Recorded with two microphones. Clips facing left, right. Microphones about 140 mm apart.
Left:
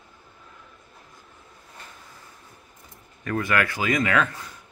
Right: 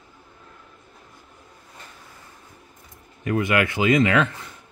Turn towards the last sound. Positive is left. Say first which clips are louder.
# right 4 dB
turn(degrees=-25)  # may be behind; listen again after turning